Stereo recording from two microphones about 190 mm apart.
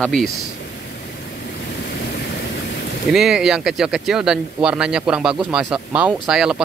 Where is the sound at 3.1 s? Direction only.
Centre (ahead or behind).